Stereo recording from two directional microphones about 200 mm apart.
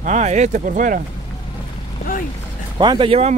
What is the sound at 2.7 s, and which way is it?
Speech, 25° right (ahead or behind).